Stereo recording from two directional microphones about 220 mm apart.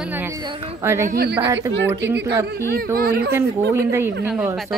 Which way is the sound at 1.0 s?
40° right (ahead or behind).